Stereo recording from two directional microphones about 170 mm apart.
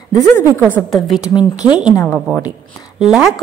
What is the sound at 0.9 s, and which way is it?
Speech, centre (ahead or behind).